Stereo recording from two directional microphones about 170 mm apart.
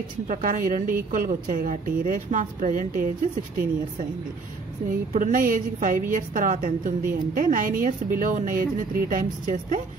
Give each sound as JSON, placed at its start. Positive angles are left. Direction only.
{"t": 0.3, "sound": "a woman's voice", "side_deg": -50}
{"t": 4.8, "sound": "a woman's voice", "side_deg": -50}